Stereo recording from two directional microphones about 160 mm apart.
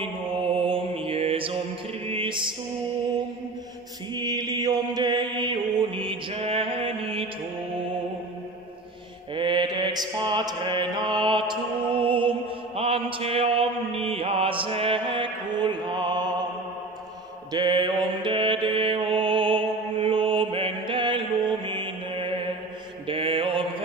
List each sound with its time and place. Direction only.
0.0 s mantra: 35° right (ahead or behind)
2.0 s music: 30° right (ahead or behind)
4.1 s mantra: 25° right (ahead or behind)
9.3 s mantra: 30° right (ahead or behind)
17.5 s mantra: 25° right (ahead or behind)